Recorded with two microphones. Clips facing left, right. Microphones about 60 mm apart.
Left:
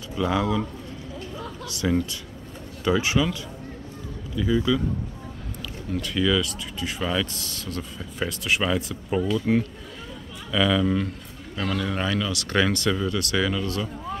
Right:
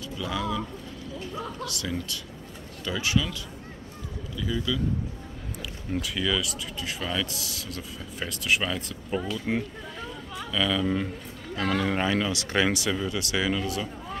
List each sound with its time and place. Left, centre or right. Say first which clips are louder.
0.2 s speech: left 6 dB; left
1.7 s speech: left 8 dB; left
4.4 s speech: left 7 dB; left
5.9 s a man's voice: left 5 dB; centre
11.6 s speech: right 1 dB; right
12.5 s speech: left 3 dB; centre